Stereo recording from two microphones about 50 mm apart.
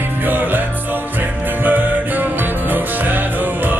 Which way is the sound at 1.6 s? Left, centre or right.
Right.